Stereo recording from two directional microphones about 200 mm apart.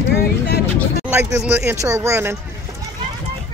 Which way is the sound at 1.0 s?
10° right (ahead or behind).